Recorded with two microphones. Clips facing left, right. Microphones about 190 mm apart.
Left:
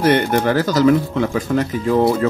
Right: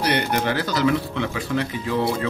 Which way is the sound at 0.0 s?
45° left (ahead or behind).